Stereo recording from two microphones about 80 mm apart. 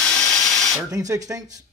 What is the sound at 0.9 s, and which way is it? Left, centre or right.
Speech, right.